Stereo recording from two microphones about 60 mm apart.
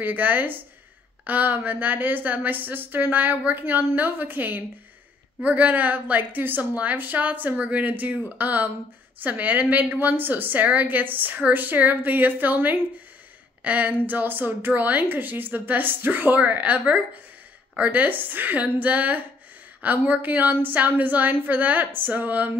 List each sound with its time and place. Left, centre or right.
0.0 s a woman's voice: right